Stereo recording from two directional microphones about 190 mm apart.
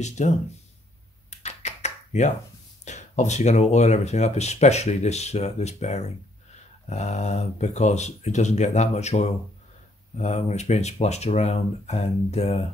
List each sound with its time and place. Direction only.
0.2 s speech: 40° left (ahead or behind)
1.4 s a sound: 35° left (ahead or behind)
2.8 s speech: 40° left (ahead or behind)